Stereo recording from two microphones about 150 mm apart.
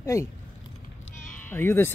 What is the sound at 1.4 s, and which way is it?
Speech, 15° left (ahead or behind).